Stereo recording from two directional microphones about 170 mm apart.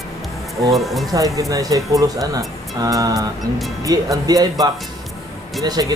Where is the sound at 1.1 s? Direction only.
20° right (ahead or behind).